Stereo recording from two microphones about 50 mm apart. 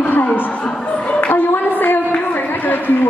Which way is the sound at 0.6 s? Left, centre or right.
Left.